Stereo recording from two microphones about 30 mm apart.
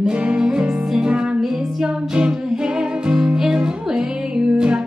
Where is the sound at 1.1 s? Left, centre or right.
Right.